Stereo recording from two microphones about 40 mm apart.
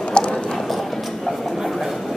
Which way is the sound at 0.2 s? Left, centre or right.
Left.